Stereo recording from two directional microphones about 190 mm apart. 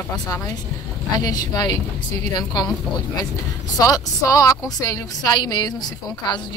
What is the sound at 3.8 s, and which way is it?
A woman's voice, 20° left (ahead or behind).